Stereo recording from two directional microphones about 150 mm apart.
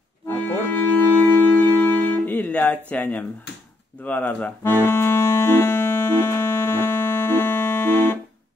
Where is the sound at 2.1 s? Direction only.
10° left (ahead or behind).